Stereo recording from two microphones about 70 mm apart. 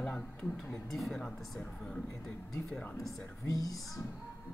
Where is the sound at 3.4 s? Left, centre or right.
Left.